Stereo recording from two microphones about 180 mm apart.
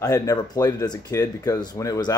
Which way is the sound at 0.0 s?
20° left (ahead or behind).